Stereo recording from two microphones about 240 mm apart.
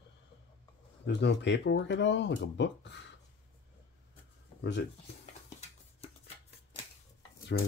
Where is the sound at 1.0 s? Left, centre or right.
Left.